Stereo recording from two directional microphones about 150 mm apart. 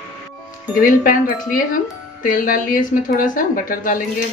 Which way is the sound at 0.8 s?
65° left (ahead or behind).